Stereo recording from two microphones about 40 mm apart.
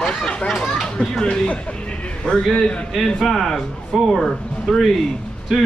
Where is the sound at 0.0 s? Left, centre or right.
Left.